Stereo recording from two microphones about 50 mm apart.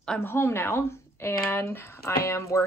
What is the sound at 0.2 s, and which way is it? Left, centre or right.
Speech, left.